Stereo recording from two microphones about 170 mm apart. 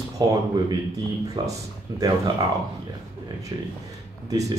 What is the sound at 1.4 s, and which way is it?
Speech, 25° right (ahead or behind).